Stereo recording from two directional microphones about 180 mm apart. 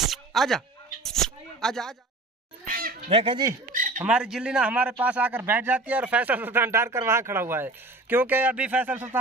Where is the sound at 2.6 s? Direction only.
55° right (ahead or behind).